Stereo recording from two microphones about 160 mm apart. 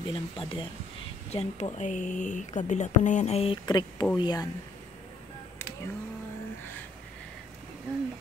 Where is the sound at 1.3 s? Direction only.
45° left (ahead or behind).